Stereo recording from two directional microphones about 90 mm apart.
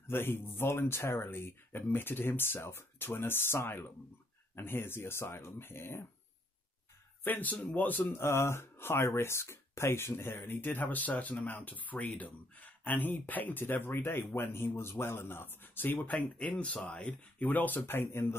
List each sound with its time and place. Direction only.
0.0 s speech: 25° left (ahead or behind)
7.2 s speech: 20° left (ahead or behind)